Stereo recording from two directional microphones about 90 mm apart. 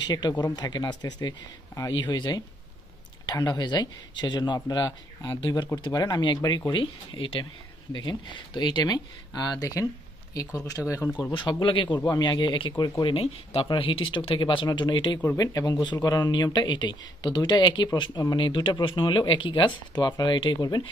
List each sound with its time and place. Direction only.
0.0 s speech: 50° left (ahead or behind)
6.7 s speech: 75° left (ahead or behind)
7.9 s speech: 55° left (ahead or behind); by 11.1 s 30° left (ahead or behind)
11.3 s speech: 65° left (ahead or behind)
12.1 s speech: 55° left (ahead or behind)
13.0 s speech: 90° left; by 14.7 s 70° left (ahead or behind)
14.7 s speech: 60° left (ahead or behind)
15.3 s speech: 40° left (ahead or behind); by 20.5 s 65° left (ahead or behind)